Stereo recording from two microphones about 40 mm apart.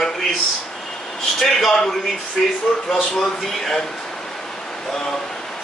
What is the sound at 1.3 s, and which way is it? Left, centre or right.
Speech, centre.